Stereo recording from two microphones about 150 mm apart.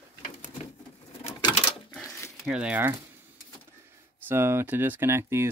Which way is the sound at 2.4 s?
5° right (ahead or behind).